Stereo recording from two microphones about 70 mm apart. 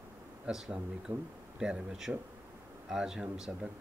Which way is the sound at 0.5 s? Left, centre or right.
Centre.